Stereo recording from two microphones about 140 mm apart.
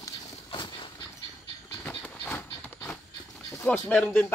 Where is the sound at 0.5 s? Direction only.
35° left (ahead or behind).